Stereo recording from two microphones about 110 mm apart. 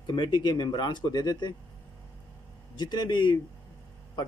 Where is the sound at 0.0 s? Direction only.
45° left (ahead or behind).